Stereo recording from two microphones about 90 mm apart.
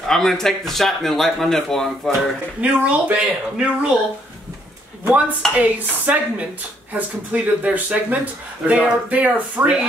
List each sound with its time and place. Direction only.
0.1 s speech: 5° left (ahead or behind)
2.6 s speech: 15° right (ahead or behind)
5.6 s speech: 15° right (ahead or behind)